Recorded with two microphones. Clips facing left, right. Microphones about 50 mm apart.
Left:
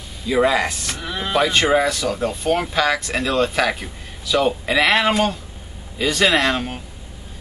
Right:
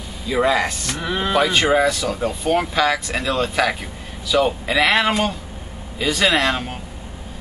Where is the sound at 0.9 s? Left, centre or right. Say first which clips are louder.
Right 4 dB; right.